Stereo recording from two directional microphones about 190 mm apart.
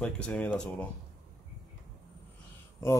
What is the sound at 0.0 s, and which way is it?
Speech, 5° left (ahead or behind).